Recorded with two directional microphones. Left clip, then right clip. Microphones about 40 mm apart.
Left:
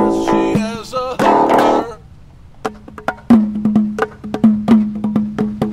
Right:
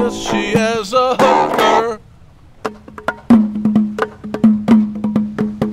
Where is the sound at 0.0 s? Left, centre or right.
Right.